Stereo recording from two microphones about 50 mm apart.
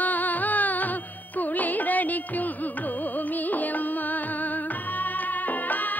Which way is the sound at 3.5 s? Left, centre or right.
Left.